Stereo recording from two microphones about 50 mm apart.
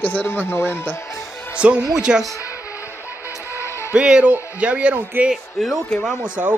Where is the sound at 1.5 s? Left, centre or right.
Right.